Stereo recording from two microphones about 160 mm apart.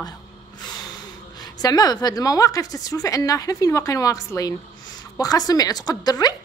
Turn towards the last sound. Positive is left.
turn(degrees=25)  # may be behind; listen again after turning